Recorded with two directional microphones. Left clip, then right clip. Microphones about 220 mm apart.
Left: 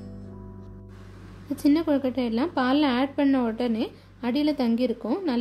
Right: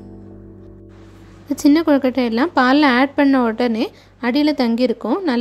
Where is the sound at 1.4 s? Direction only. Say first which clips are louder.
Right 8 dB; 20° right (ahead or behind).